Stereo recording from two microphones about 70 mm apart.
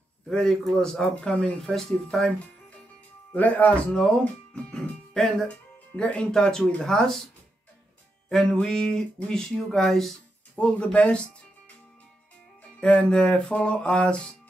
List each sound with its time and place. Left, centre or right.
0.3 s speech: centre
3.3 s speech: left; by 7.2 s centre
8.3 s speech: centre
12.8 s speech: centre